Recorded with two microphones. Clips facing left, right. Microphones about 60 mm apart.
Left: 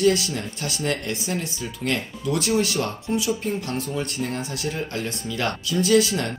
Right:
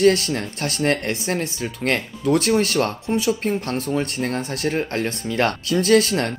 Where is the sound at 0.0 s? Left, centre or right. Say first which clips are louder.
Right 4 dB; right.